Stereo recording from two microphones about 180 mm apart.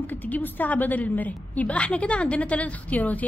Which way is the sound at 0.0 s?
10° left (ahead or behind).